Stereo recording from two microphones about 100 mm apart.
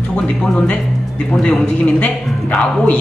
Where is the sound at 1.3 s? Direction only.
10° left (ahead or behind).